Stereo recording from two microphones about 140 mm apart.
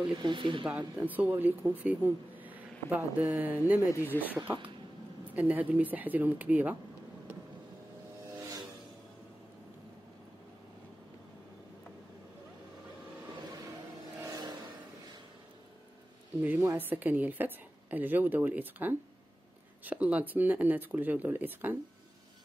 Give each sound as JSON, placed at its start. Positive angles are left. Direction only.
{"t": 0.1, "sound": "speech", "side_deg": -35}
{"t": 0.9, "sound": "speech", "side_deg": -10}
{"t": 8.4, "sound": "vehicle", "side_deg": -25}
{"t": 14.2, "sound": "vehicle", "side_deg": -25}
{"t": 16.4, "sound": "speech", "side_deg": -15}